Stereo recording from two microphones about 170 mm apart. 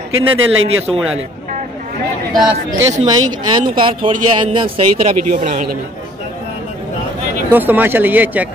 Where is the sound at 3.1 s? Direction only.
30° right (ahead or behind).